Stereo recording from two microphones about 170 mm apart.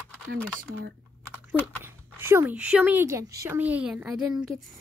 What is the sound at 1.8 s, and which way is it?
A woman's voice, 10° right (ahead or behind).